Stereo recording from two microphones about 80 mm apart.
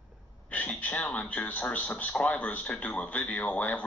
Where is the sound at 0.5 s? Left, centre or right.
Left.